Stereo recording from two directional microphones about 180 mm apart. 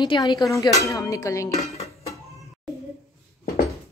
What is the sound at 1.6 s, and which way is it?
Music, 35° left (ahead or behind).